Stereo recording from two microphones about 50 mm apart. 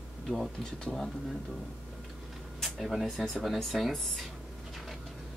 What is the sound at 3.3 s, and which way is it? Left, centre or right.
Speech, centre.